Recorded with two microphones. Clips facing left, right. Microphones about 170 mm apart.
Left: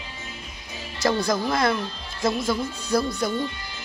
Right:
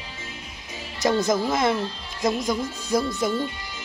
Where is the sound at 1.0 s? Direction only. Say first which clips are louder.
Right 1 dB; 20° right (ahead or behind).